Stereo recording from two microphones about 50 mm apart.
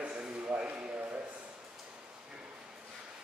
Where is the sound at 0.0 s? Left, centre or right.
Right.